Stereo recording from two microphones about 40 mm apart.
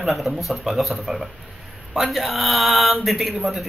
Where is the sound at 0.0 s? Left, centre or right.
Centre.